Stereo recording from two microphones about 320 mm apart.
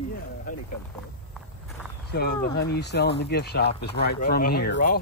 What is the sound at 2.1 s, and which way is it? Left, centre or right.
Speech, left.